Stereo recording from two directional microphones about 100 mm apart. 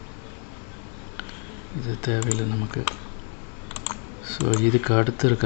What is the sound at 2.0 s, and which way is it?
Speech, 15° right (ahead or behind).